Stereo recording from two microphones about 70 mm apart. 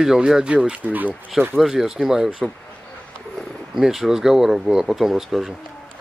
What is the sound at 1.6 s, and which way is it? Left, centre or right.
Speech, centre.